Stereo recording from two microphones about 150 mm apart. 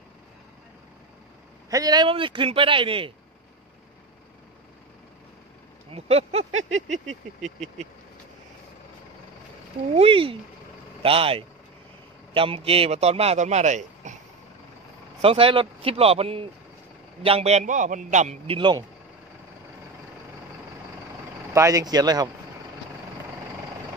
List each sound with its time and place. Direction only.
1.7 s speech: 25° right (ahead or behind)
5.9 s a man's voice: 40° right (ahead or behind)
9.9 s a man's voice: 40° right (ahead or behind)
15.2 s a man's voice: 35° right (ahead or behind)
18.6 s speech: 30° right (ahead or behind)
21.5 s speech: 20° right (ahead or behind)